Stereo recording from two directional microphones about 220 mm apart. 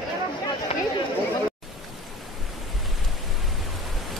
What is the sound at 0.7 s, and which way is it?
Chatter, 25° left (ahead or behind).